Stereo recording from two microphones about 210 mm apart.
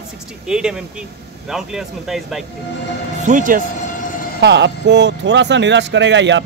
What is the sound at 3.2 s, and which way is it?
Speech, 40° right (ahead or behind).